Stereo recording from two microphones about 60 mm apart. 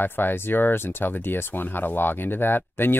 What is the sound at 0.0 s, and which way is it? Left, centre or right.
Speech, left.